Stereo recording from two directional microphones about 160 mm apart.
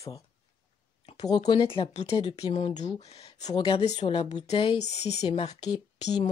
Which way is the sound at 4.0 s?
40° left (ahead or behind).